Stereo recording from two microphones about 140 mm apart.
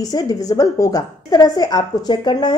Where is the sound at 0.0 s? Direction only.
25° left (ahead or behind).